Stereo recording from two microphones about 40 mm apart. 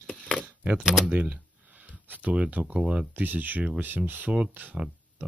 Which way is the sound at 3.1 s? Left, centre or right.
Right.